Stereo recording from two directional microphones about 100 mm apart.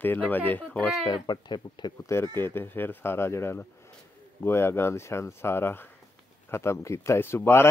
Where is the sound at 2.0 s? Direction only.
25° left (ahead or behind).